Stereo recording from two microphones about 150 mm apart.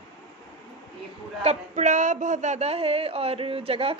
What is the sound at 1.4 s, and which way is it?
Speech, 50° right (ahead or behind).